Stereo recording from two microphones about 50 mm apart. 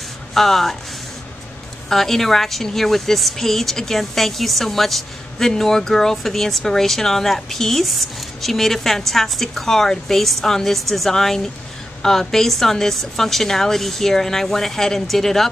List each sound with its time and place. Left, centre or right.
0.3 s speech: centre
1.9 s a woman's voice: centre